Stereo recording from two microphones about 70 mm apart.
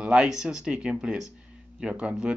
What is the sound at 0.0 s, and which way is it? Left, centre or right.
Speech, centre.